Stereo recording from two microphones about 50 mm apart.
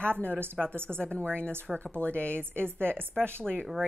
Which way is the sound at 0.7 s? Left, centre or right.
Right.